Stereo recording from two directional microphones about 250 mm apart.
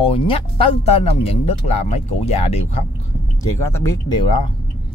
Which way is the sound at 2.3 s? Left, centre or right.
Left.